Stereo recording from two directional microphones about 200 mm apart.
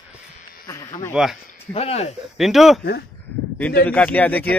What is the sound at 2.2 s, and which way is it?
Speech, centre (ahead or behind).